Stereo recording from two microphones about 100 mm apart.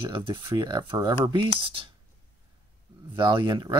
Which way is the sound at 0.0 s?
55° right (ahead or behind).